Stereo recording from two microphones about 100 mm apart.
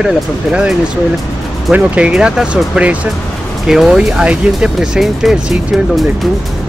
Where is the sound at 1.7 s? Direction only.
10° right (ahead or behind).